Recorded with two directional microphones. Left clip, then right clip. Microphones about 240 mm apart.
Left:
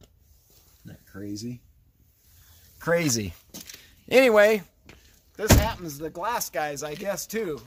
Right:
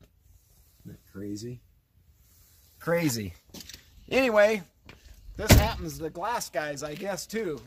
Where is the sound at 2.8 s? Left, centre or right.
Left.